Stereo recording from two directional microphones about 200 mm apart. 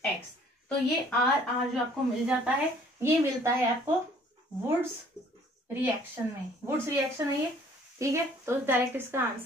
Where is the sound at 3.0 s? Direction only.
15° right (ahead or behind).